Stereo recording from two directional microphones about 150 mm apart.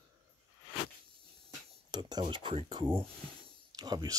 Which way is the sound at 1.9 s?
30° right (ahead or behind).